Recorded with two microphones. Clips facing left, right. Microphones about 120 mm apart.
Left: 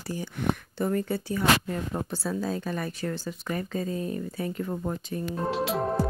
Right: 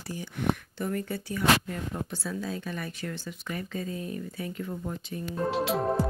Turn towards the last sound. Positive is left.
turn(degrees=0)  # may be behind; listen again after turning